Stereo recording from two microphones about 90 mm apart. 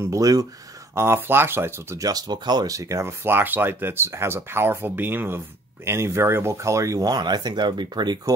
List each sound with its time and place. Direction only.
0.0 s speech: 40° right (ahead or behind)
0.9 s speech: 30° right (ahead or behind)
2.0 s speech: 45° right (ahead or behind)